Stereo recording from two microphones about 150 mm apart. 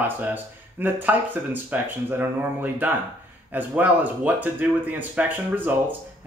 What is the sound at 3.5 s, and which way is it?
Speech, 10° right (ahead or behind).